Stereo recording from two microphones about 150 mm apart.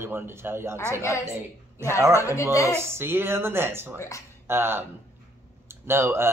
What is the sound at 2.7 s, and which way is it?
A man's voice, 15° right (ahead or behind).